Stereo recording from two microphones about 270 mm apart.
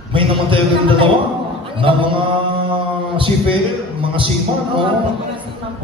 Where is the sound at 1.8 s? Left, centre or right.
Centre.